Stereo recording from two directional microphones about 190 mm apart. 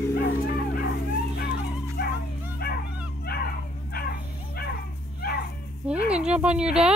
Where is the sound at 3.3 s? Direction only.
55° left (ahead or behind).